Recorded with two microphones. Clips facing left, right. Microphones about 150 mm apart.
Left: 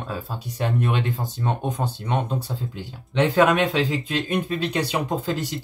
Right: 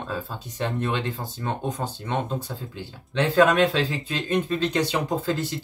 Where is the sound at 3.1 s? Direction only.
15° left (ahead or behind).